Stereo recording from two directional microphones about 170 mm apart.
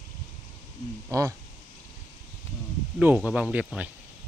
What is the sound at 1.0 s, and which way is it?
Speech, 15° right (ahead or behind).